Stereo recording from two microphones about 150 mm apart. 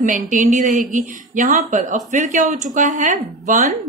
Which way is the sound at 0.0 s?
60° right (ahead or behind).